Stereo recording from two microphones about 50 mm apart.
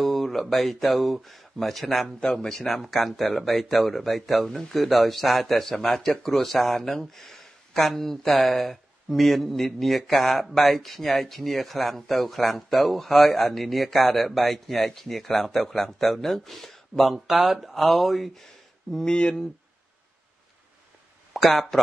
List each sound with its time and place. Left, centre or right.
0.0 s speech: centre
2.1 s speech: centre
19.0 s speech: centre
21.5 s speech: centre